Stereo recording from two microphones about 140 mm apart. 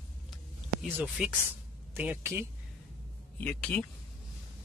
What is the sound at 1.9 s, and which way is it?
Speech, 15° right (ahead or behind).